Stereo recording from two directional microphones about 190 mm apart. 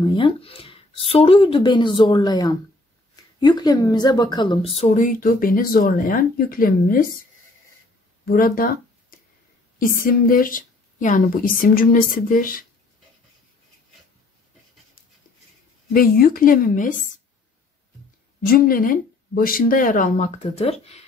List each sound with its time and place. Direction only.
0.0 s a woman's voice: 25° left (ahead or behind); by 7.1 s 50° left (ahead or behind)
8.3 s a sound: 50° left (ahead or behind)
9.9 s speech: 50° left (ahead or behind)
15.9 s speech: 50° left (ahead or behind)
18.5 s speech: 50° left (ahead or behind); by 21.0 s 30° left (ahead or behind)